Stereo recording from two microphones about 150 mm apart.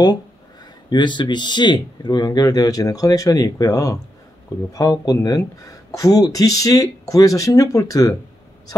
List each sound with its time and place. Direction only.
0.8 s speech: 30° left (ahead or behind)